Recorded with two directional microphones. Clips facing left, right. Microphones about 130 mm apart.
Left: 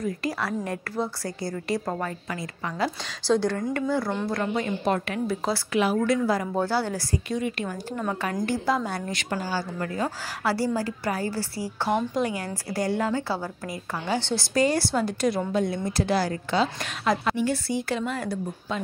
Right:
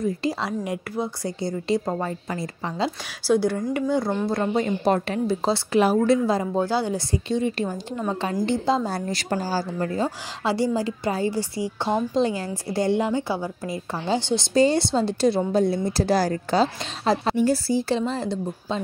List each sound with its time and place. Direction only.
0.0 s a woman's voice: 25° right (ahead or behind)
0.5 s a woman's voice: 15° right (ahead or behind)
3.3 s speech: 10° right (ahead or behind)
4.3 s a woman's voice: 30° right (ahead or behind)
10.0 s a woman's voice: 20° right (ahead or behind)